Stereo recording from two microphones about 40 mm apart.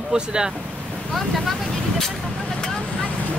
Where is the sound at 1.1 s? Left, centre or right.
Centre.